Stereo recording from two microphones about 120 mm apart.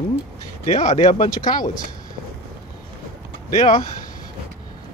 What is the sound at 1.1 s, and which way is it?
Speech, 65° left (ahead or behind).